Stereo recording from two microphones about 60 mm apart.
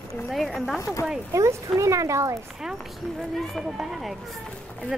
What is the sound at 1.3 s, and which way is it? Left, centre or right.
Speech, right.